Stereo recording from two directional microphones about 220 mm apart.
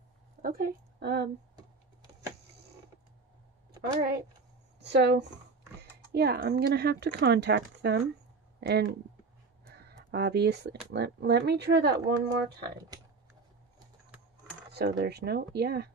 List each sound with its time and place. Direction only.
0.4 s a woman's voice: 45° right (ahead or behind)
4.7 s speech: 50° right (ahead or behind)
14.7 s speech: 45° right (ahead or behind)